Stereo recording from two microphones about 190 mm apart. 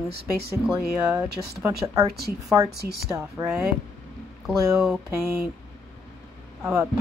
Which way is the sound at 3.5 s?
5° right (ahead or behind).